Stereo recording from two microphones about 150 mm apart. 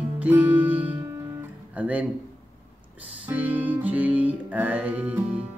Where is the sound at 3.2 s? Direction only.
10° right (ahead or behind).